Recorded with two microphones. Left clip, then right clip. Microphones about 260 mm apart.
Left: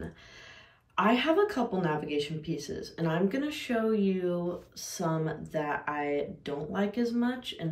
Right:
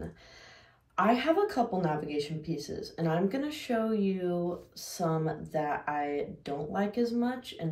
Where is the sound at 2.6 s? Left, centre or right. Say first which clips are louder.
Even; centre.